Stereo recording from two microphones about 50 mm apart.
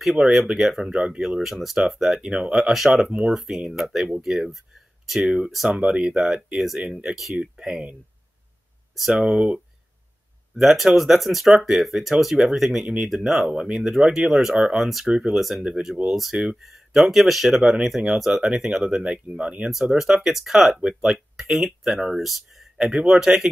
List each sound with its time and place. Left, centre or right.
0.2 s speech: centre
1.4 s speech: centre
2.4 s speech: centre
3.1 s speech: centre
9.1 s speech: centre
10.5 s speech: centre
14.8 s speech: centre; by 19.7 s right
19.7 s speech: centre